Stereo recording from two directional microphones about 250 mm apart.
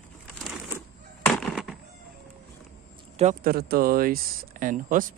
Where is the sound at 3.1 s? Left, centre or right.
Right.